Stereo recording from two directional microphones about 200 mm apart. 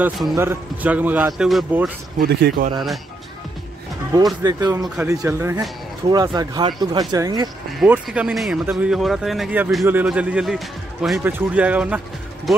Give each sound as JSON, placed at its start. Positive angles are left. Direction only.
{"t": 0.0, "sound": "speech", "side_deg": -10}
{"t": 2.1, "sound": "speech", "side_deg": -50}
{"t": 4.4, "sound": "speech", "side_deg": -20}
{"t": 7.8, "sound": "speech", "side_deg": -5}